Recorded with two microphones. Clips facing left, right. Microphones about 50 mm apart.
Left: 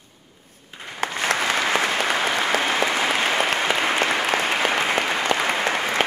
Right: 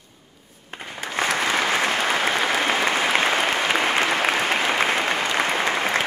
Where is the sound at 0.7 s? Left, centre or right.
Right.